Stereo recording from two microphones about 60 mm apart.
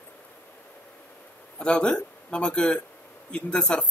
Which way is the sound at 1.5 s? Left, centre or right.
Centre.